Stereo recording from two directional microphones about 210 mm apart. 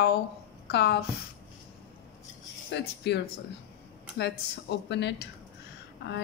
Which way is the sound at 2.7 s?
55° left (ahead or behind).